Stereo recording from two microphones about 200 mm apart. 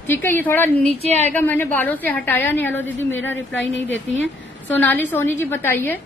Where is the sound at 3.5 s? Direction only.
65° left (ahead or behind).